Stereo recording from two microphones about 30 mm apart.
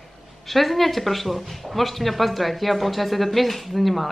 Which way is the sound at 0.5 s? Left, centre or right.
Centre.